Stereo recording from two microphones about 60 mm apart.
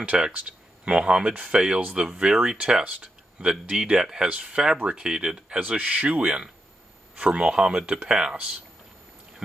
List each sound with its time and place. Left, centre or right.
0.1 s speech: centre
2.0 s speech: centre
5.6 s speech: right